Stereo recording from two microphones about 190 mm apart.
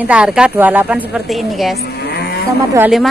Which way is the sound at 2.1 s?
55° left (ahead or behind).